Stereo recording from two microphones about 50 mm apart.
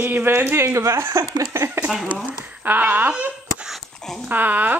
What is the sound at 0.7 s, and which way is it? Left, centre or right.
Speech, right.